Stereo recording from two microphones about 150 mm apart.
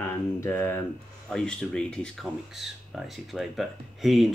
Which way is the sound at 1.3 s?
5° left (ahead or behind).